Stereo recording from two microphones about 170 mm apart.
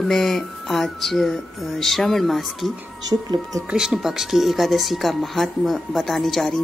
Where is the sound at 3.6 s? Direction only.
5° right (ahead or behind).